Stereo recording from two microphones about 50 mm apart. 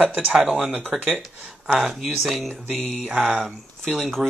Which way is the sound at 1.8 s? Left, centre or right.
Centre.